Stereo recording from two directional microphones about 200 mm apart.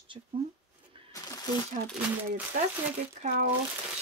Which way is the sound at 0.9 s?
25° right (ahead or behind).